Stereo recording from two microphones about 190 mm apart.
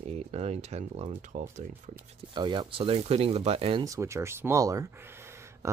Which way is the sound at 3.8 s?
15° right (ahead or behind).